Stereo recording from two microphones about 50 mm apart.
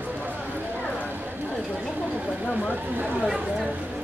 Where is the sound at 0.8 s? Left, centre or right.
Left.